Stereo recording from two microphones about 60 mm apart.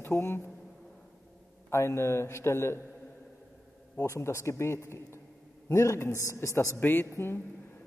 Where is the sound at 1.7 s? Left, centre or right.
Left.